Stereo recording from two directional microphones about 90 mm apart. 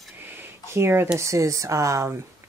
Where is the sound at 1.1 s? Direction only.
35° right (ahead or behind).